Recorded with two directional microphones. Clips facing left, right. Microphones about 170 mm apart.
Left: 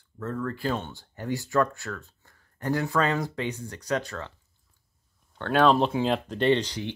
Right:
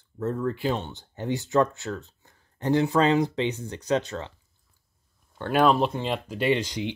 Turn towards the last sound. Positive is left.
turn(degrees=-15)  # may be behind; listen again after turning